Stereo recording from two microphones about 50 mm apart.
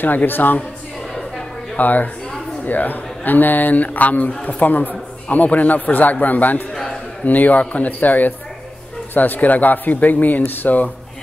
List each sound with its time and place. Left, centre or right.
0.0 s speech: left
1.8 s speech: left
6.7 s a sound: centre
7.2 s speech: left